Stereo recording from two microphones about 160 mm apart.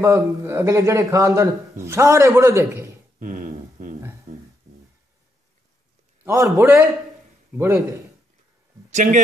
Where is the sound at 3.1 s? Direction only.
55° right (ahead or behind).